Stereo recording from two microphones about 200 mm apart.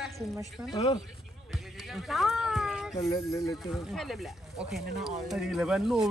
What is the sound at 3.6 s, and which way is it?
Speech, centre (ahead or behind).